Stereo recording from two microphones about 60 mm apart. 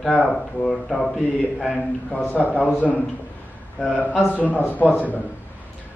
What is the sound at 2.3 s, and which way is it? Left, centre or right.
Speech, left.